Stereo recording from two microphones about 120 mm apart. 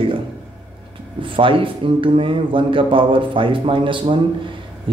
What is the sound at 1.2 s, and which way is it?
A man's voice, 45° right (ahead or behind).